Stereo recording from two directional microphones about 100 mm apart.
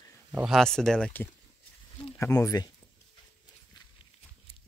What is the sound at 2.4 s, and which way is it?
Speech, 35° left (ahead or behind).